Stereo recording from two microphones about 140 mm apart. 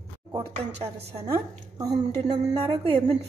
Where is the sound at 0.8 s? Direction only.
50° right (ahead or behind).